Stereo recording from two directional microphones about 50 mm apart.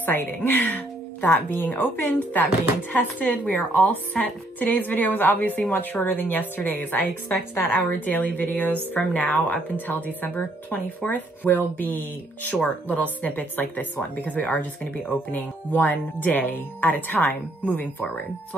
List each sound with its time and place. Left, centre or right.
0.0 s a woman's voice: left